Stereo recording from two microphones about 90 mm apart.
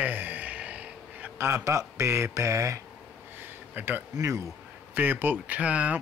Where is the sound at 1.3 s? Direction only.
30° right (ahead or behind).